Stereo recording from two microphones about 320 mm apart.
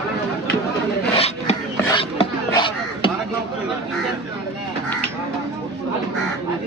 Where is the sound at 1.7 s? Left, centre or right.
Centre.